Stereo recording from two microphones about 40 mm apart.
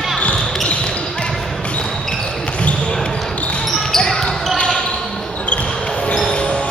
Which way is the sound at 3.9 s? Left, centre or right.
Centre.